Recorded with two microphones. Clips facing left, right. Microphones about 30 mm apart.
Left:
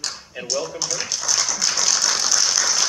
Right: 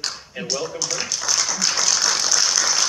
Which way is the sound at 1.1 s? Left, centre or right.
Centre.